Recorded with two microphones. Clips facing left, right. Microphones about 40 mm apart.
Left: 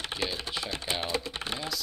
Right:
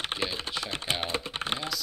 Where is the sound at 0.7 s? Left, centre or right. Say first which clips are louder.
Even; right.